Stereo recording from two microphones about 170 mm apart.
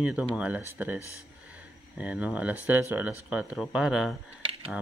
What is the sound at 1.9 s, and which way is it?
Speech, 10° right (ahead or behind).